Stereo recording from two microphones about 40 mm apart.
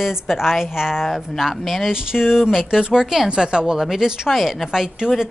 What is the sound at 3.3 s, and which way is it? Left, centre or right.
A woman's voice, right.